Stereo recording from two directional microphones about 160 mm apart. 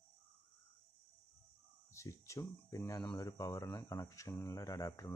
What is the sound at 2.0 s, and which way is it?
Speech, 20° left (ahead or behind).